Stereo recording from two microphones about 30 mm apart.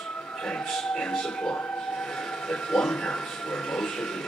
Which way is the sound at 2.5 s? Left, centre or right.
Left.